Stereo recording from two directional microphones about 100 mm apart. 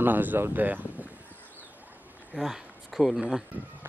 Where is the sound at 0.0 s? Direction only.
20° right (ahead or behind).